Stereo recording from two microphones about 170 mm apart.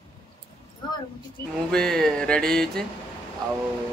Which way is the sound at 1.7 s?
5° left (ahead or behind).